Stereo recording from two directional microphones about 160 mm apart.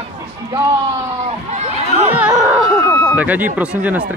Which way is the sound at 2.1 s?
10° right (ahead or behind).